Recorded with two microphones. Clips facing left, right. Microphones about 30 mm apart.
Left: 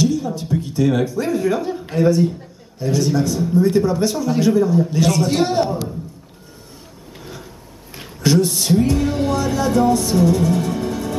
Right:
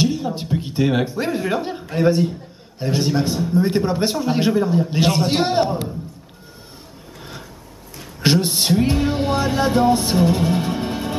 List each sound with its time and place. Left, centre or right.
0.0 s speech: right
2.0 s music: right
8.2 s music: right